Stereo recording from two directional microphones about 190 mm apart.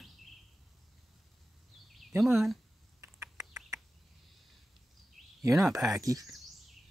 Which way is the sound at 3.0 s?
15° right (ahead or behind).